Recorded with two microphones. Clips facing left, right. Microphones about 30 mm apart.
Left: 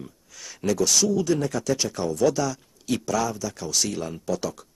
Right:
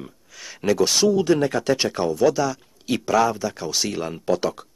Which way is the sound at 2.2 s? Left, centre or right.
Centre.